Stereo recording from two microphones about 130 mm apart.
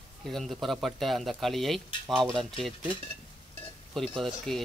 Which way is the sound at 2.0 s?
35° right (ahead or behind).